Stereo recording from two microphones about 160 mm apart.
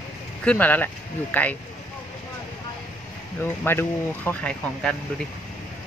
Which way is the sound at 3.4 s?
15° left (ahead or behind).